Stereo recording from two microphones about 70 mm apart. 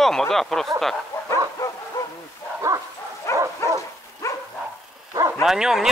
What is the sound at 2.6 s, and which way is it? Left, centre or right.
Bow-wow, right.